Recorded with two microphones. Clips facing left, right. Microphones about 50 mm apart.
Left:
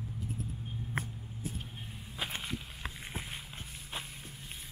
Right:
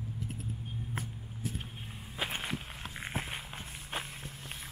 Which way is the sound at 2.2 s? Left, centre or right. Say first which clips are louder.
Right 2 dB; right.